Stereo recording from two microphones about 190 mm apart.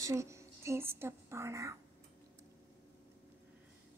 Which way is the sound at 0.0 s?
15° right (ahead or behind).